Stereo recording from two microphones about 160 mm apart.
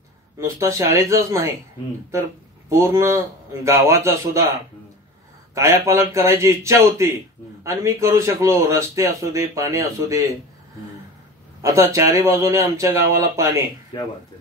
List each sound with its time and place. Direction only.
0.4 s a man's voice: 20° right (ahead or behind)
2.7 s a man's voice: 15° right (ahead or behind)
5.5 s a man's voice: 20° right (ahead or behind)
11.6 s a man's voice: 20° right (ahead or behind)